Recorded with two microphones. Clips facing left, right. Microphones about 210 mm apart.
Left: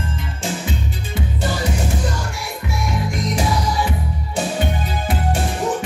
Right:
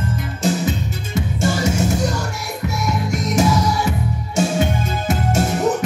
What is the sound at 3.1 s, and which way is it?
Music, 45° right (ahead or behind).